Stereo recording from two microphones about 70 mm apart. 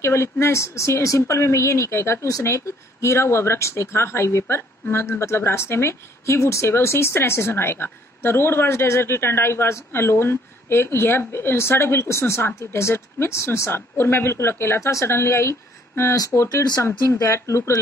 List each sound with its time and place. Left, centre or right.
0.0 s a woman's voice: left
16.3 s speech: centre
17.2 s speech: left